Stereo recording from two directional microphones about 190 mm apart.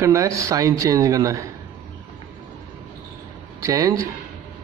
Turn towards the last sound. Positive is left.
turn(degrees=-15)  # may be behind; listen again after turning